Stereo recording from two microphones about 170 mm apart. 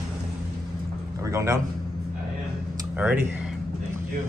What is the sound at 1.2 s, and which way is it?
Speech, 20° right (ahead or behind).